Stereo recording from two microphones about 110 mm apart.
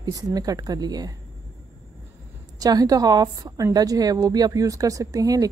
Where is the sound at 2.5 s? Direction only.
35° right (ahead or behind).